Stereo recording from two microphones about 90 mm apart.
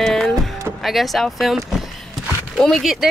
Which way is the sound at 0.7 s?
Centre (ahead or behind).